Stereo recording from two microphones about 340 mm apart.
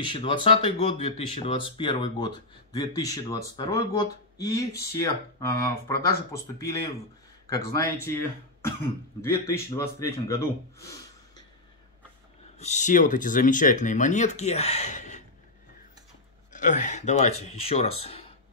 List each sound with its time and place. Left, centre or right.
0.0 s speech: centre
12.5 s speech: left
16.5 s speech: left